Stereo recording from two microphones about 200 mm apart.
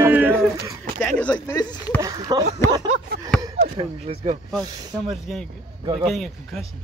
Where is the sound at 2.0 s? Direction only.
20° right (ahead or behind).